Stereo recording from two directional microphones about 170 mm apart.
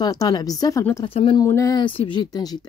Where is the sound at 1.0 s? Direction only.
30° left (ahead or behind).